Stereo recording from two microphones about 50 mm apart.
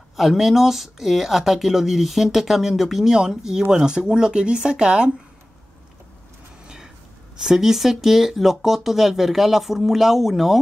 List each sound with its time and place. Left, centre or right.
0.1 s speech: centre
7.4 s speech: centre